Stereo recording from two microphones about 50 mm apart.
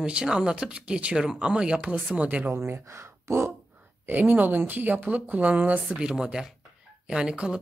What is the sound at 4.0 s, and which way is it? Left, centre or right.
Speech, right.